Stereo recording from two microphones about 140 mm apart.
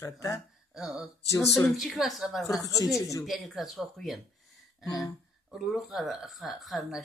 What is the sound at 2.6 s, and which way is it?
Speech, 25° left (ahead or behind).